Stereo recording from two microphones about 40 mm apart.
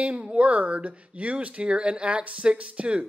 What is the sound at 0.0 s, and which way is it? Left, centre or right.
Speech, right.